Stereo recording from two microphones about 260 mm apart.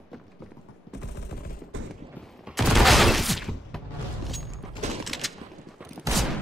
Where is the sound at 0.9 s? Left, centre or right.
Left.